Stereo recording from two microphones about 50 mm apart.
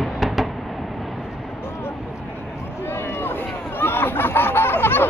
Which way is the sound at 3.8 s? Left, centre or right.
Left.